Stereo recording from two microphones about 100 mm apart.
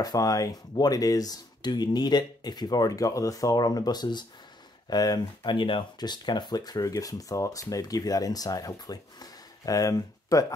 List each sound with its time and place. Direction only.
0.0 s speech: 40° left (ahead or behind)